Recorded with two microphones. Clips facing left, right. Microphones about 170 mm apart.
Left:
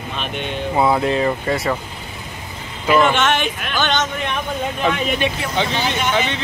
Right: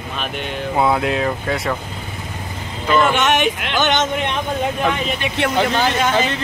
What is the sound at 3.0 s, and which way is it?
Speech, 15° right (ahead or behind).